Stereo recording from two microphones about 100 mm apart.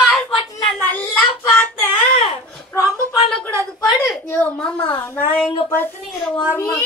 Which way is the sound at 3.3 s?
10° left (ahead or behind).